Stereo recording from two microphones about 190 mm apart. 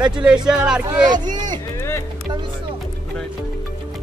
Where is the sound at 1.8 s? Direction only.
15° left (ahead or behind).